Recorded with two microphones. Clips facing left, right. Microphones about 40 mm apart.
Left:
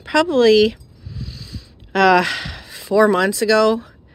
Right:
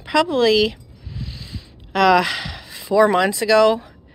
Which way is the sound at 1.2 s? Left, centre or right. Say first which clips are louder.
Even; right.